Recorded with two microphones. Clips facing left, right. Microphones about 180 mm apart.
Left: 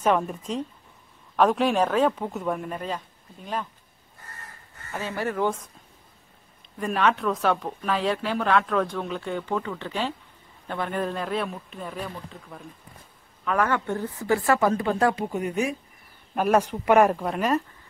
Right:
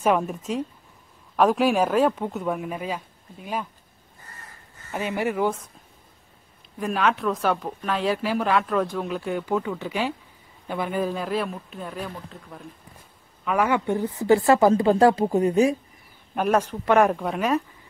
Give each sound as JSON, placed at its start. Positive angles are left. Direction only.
{"t": 0.0, "sound": "speech", "side_deg": -5}
{"t": 4.9, "sound": "speech", "side_deg": -15}
{"t": 6.8, "sound": "speech", "side_deg": 0}
{"t": 13.5, "sound": "a woman's voice", "side_deg": -10}
{"t": 16.3, "sound": "speech", "side_deg": 0}